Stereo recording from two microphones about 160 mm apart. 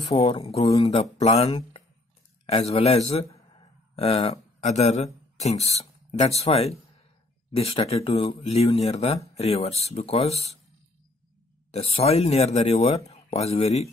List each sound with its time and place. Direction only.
0.0 s speech: 35° left (ahead or behind)
3.5 s a sound: 40° left (ahead or behind)
4.3 s speech: 45° left (ahead or behind)
11.7 s speech: 40° left (ahead or behind)